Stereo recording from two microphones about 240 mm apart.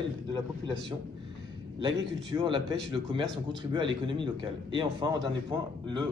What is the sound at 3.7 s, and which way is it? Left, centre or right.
A man's voice, centre.